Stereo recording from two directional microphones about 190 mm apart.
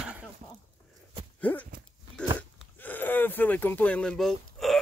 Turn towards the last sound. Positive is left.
turn(degrees=0)  # may be behind; listen again after turning